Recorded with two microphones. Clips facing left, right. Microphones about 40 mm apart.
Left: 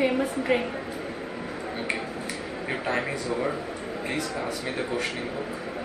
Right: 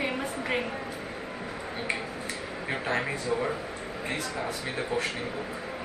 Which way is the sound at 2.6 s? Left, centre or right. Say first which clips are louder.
Left 1 dB; centre.